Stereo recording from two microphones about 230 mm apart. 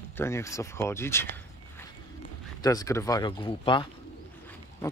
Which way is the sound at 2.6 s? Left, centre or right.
Centre.